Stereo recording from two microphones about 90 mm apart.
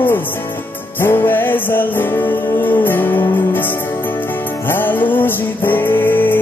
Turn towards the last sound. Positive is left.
turn(degrees=20)  # may be behind; listen again after turning